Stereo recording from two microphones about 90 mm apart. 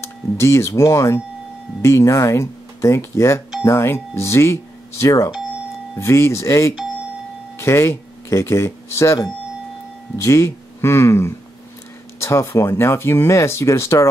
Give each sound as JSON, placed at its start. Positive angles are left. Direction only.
{"t": 0.0, "sound": "speech", "side_deg": 30}